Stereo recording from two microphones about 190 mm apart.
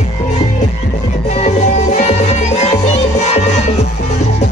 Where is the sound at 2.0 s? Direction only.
35° left (ahead or behind).